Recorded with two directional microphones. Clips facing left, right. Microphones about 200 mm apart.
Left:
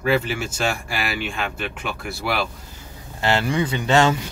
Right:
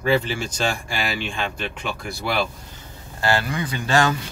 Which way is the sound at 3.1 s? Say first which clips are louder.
Left 2 dB; 20° left (ahead or behind).